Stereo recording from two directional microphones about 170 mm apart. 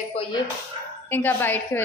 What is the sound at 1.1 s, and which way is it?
Speech, 10° left (ahead or behind).